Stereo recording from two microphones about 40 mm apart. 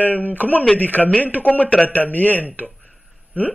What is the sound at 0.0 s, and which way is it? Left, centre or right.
A man's voice, left.